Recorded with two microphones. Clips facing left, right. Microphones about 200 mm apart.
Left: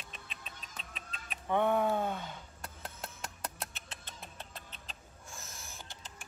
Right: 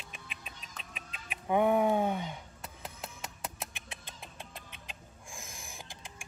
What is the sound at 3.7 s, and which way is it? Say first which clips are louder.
Rodents: right 2 dB; 15° right (ahead or behind).